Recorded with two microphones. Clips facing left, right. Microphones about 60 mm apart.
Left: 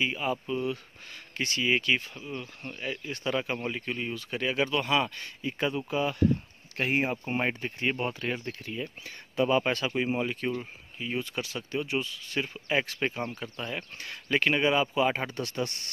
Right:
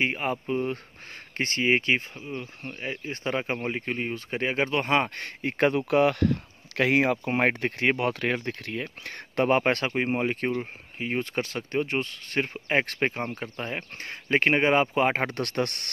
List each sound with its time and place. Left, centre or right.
0.0 s speech: right
2.2 s speech: centre; by 15.9 s right